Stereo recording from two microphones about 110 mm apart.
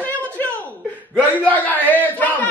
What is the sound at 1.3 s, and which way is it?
Speech, 15° left (ahead or behind).